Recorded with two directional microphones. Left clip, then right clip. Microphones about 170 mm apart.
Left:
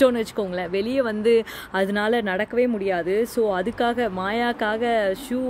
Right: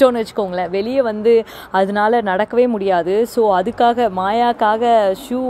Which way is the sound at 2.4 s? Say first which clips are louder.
Right 7 dB; 15° left (ahead or behind).